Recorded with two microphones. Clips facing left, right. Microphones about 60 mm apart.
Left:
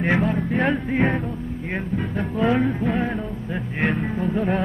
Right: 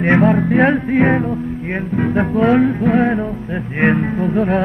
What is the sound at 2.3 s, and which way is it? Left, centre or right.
Music, right.